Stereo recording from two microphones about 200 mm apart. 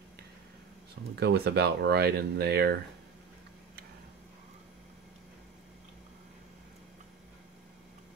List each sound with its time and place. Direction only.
1.1 s speech: 55° right (ahead or behind)